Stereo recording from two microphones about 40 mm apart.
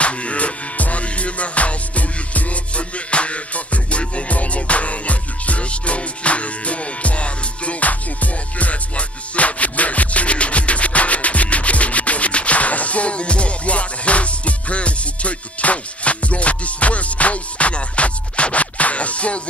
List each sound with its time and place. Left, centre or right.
0.0 s music: left